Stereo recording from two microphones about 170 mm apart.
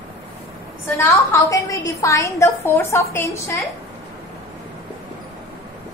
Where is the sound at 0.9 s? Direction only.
20° left (ahead or behind).